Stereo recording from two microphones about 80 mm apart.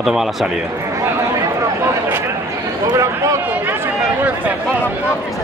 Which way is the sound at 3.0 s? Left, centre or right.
Right.